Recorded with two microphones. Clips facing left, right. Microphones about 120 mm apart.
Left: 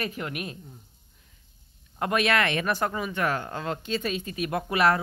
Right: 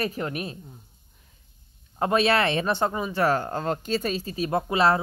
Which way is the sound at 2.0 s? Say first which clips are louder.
Right 3 dB; 30° right (ahead or behind).